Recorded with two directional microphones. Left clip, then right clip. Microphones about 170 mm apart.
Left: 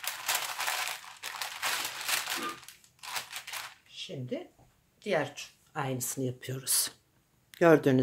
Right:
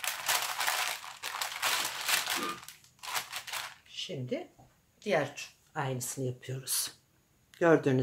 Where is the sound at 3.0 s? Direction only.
Centre (ahead or behind).